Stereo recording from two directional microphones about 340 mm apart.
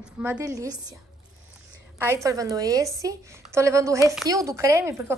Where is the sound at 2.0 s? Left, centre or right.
Centre.